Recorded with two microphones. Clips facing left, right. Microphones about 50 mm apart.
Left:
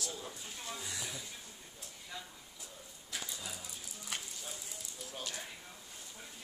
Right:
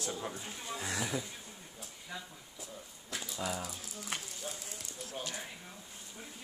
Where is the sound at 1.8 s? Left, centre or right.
Centre.